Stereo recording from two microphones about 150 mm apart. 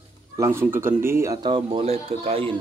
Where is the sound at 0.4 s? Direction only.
15° right (ahead or behind).